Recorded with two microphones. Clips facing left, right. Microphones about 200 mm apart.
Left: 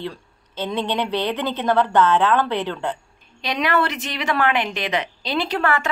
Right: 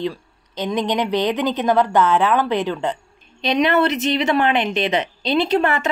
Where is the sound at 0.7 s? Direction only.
15° right (ahead or behind).